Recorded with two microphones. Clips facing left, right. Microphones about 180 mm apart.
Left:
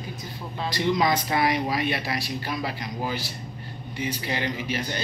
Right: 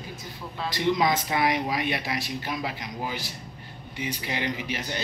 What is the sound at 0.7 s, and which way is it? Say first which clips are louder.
A man's voice: left 1 dB; 20° right (ahead or behind).